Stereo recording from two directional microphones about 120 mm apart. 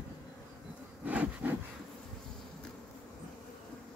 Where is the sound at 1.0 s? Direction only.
10° right (ahead or behind).